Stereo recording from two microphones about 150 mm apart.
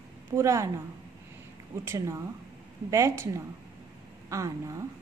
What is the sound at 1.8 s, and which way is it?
A woman's voice, 15° right (ahead or behind).